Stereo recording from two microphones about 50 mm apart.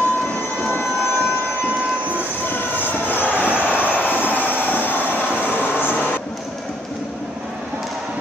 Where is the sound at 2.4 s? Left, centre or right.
Left.